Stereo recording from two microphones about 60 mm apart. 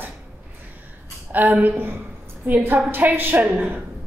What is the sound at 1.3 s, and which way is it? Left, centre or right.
A woman's voice, right.